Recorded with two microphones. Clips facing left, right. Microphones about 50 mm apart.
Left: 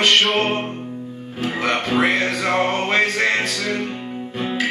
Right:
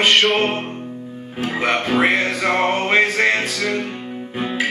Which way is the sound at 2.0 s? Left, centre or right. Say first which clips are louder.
Right 1 dB; centre.